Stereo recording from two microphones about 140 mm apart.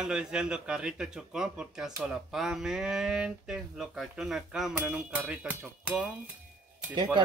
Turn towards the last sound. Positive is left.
turn(degrees=-30)  # may be behind; listen again after turning